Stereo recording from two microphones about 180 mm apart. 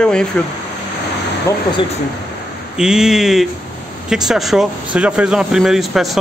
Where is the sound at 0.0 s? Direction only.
5° left (ahead or behind).